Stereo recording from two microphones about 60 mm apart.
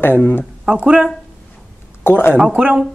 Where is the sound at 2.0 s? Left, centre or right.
Left.